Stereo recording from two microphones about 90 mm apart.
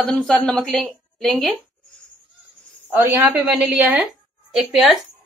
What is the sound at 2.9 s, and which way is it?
Speech, 30° right (ahead or behind).